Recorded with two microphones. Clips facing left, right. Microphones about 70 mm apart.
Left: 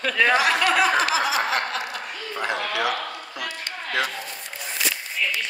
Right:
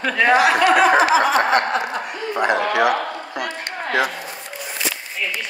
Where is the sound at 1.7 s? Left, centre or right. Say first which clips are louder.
Right 7 dB; right.